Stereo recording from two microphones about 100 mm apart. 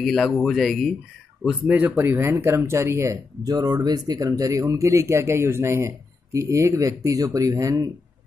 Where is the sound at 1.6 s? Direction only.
15° right (ahead or behind).